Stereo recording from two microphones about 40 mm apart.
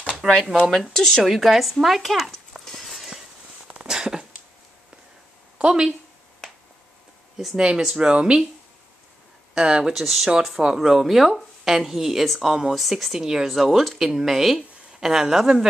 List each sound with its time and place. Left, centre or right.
0.2 s speech: centre
0.9 s speech: centre
1.2 s speech: centre
3.1 s a sound: centre
5.6 s speech: right
7.5 s speech: centre
9.6 s speech: right
9.9 s speech: centre
10.6 s speech: centre